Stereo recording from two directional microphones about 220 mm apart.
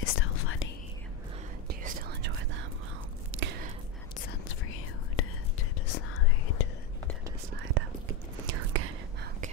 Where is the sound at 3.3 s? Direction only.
65° right (ahead or behind).